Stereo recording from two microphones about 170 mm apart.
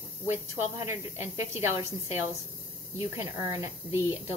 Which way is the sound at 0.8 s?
15° right (ahead or behind).